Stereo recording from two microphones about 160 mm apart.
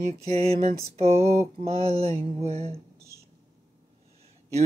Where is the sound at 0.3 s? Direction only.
35° right (ahead or behind).